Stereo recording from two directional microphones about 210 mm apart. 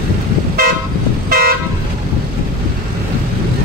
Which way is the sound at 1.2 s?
45° right (ahead or behind).